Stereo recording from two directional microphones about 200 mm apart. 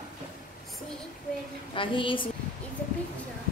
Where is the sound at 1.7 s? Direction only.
25° left (ahead or behind).